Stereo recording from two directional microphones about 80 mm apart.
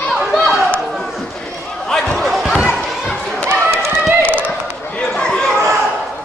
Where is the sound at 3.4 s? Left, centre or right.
Right.